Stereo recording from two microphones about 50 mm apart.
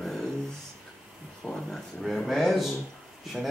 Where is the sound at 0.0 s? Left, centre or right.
Centre.